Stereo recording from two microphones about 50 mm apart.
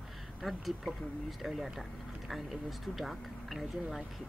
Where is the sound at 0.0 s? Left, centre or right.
Centre.